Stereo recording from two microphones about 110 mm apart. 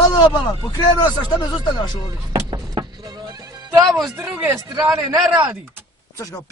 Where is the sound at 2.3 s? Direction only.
40° right (ahead or behind).